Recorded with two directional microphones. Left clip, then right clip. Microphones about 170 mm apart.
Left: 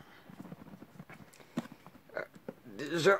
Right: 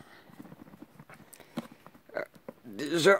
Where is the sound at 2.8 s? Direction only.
45° right (ahead or behind).